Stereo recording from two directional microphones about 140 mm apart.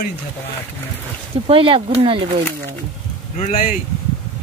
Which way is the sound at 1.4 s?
40° right (ahead or behind).